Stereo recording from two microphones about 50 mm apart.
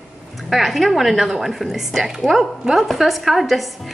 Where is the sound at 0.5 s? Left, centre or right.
Centre.